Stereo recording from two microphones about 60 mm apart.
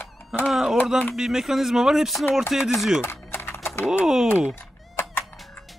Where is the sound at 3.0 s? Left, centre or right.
Left.